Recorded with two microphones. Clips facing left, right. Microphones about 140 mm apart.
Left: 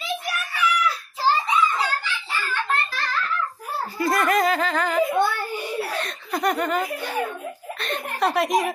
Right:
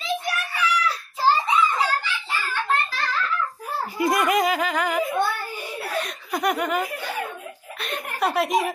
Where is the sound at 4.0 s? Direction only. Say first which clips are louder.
Even; 15° right (ahead or behind).